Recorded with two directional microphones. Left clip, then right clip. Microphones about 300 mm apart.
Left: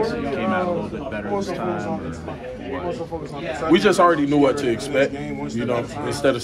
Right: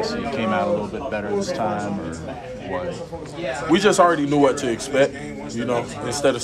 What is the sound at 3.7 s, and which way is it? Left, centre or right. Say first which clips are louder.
A man's voice: even; centre.